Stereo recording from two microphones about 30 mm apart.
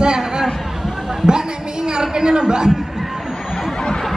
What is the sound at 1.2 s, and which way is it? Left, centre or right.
A woman's voice, right.